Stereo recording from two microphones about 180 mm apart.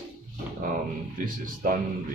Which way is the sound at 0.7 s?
50° right (ahead or behind).